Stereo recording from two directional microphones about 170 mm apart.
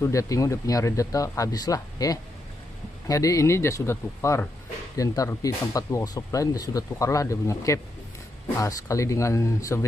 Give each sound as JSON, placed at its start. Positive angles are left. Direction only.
{"t": 0.0, "sound": "speech", "side_deg": 20}